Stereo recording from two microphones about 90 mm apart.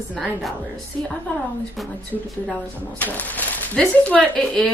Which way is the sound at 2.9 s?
20° left (ahead or behind).